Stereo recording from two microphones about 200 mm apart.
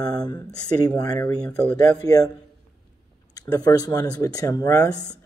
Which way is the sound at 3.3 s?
20° left (ahead or behind).